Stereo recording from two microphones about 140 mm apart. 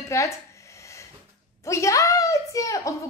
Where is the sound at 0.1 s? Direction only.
20° left (ahead or behind).